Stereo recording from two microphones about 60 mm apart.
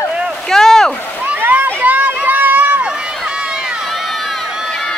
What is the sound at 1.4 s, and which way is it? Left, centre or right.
Run, right.